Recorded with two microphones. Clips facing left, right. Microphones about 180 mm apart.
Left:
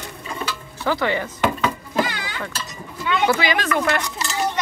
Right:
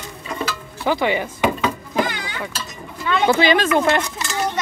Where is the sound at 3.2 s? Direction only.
25° right (ahead or behind).